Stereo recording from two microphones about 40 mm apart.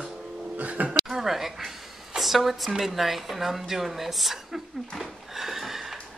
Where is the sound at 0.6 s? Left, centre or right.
Right.